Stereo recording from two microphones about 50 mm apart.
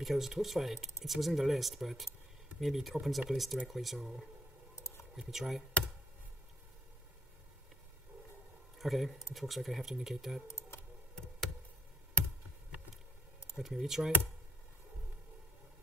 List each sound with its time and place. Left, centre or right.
0.0 s speech: centre
4.7 s a sound: left
5.3 s speech: centre
8.7 s speech: centre
10.5 s computer keyboard: left
13.7 s speech: centre